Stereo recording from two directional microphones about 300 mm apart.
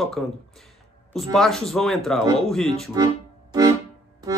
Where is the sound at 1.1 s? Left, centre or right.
Centre.